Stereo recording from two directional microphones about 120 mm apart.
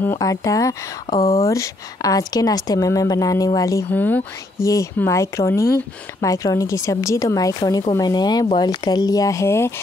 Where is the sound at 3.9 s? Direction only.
15° left (ahead or behind).